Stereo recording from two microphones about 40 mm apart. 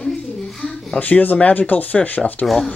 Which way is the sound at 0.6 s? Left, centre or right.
Centre.